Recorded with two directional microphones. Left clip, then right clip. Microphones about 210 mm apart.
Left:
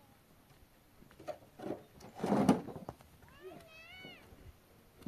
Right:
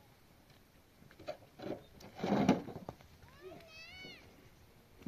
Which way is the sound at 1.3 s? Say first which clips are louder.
Left 1 dB; 40° right (ahead or behind).